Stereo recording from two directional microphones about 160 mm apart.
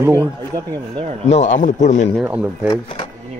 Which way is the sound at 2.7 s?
35° left (ahead or behind).